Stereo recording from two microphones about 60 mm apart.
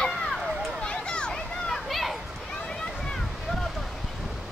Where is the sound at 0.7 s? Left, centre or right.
Centre.